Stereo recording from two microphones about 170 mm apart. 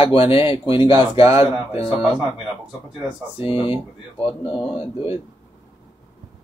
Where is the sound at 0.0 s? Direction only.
30° left (ahead or behind).